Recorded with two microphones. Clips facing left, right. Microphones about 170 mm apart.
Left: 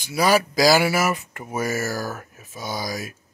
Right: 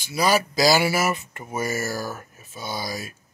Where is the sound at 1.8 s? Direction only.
15° right (ahead or behind).